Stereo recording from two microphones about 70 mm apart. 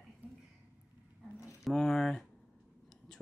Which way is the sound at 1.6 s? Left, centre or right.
Centre.